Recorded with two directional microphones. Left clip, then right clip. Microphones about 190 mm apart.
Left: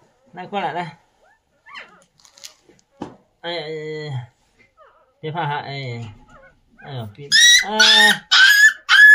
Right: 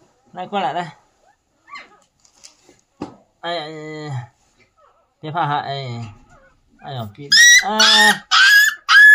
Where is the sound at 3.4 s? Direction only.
20° right (ahead or behind).